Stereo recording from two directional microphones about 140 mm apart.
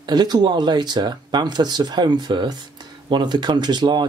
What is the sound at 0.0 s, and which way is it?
Speech, 30° right (ahead or behind).